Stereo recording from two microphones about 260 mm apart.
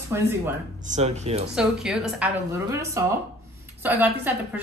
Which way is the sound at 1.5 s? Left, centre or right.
Centre.